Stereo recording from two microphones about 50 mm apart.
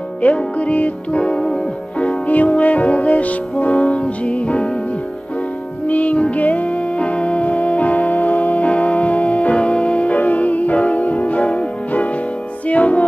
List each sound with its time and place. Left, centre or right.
0.2 s music: left
5.9 s music: left